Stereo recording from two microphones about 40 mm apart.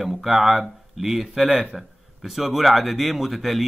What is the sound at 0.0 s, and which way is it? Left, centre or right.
Speech, centre.